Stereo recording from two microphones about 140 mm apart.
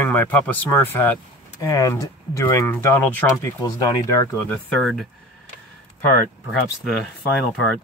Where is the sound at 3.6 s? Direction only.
25° left (ahead or behind).